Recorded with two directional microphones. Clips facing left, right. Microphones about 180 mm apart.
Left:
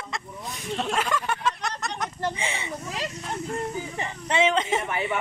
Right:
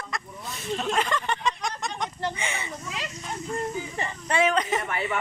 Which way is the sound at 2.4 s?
30° left (ahead or behind).